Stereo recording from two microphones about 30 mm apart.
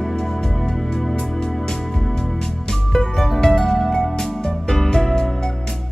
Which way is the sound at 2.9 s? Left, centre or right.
Centre.